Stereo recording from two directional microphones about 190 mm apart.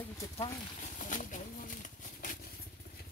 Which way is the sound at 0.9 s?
45° left (ahead or behind).